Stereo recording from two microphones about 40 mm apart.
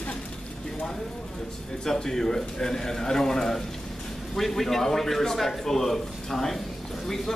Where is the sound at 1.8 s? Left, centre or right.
Centre.